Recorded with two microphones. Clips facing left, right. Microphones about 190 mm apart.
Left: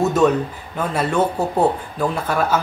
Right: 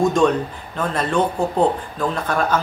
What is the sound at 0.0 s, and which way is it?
Speech, 5° left (ahead or behind).